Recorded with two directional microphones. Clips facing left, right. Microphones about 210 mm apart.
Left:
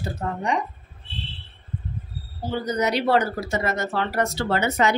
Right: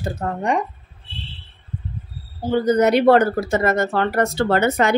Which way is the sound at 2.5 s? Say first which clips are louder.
Right 8 dB; 55° right (ahead or behind).